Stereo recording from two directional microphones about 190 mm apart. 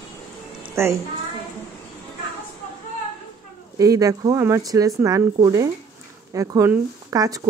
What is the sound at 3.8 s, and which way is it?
Speech, 20° right (ahead or behind).